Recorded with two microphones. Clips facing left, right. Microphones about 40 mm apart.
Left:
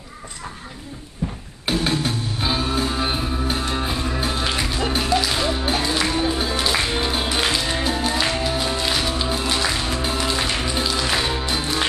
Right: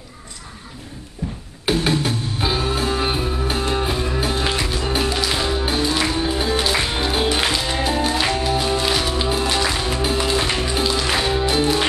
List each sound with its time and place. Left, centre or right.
1.2 s music: left
1.7 s music: centre
6.9 s music: centre